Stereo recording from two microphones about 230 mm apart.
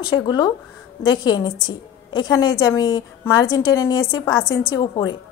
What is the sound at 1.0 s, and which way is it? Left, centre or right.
A woman's voice, centre.